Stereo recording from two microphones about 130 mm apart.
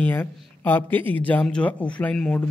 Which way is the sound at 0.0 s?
15° left (ahead or behind).